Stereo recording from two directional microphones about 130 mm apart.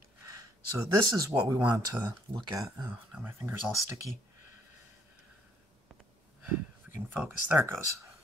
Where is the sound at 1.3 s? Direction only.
25° right (ahead or behind).